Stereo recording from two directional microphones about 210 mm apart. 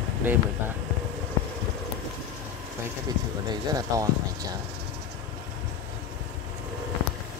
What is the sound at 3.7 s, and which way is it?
Speech, 15° right (ahead or behind).